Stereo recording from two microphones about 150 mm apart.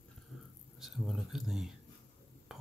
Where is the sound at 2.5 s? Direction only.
5° right (ahead or behind).